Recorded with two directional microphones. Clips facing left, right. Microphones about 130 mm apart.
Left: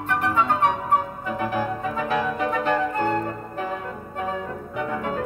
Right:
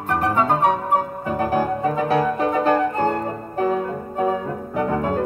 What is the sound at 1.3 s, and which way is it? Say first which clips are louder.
Music: right 5 dB; 40° right (ahead or behind).